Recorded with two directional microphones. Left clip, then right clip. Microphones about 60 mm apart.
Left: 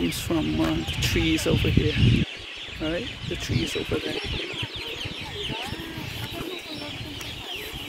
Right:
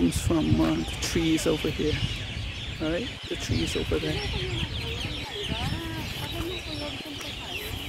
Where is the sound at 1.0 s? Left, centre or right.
Right.